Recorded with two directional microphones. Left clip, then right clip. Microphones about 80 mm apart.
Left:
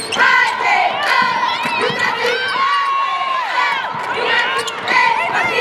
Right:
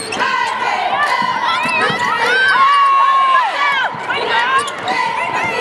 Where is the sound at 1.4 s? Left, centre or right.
Right.